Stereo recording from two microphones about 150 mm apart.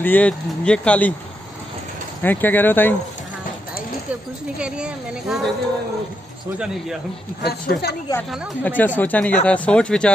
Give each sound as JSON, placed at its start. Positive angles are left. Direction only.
{"t": 0.0, "sound": "speech", "side_deg": 10}
{"t": 2.2, "sound": "speech", "side_deg": 10}
{"t": 4.6, "sound": "speech", "side_deg": -5}
{"t": 7.4, "sound": "speech", "side_deg": 90}
{"t": 8.6, "sound": "speech", "side_deg": 10}